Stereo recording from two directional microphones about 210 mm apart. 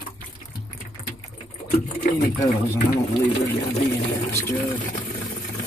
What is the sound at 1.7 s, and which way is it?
Sewing machine, 40° left (ahead or behind).